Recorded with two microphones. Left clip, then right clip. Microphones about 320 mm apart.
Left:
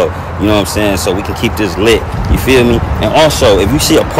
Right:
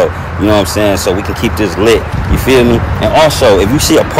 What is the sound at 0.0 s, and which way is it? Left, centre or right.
Speech, centre.